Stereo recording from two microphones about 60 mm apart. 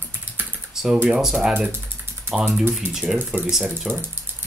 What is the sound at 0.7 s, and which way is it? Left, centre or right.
Computer keyboard, centre.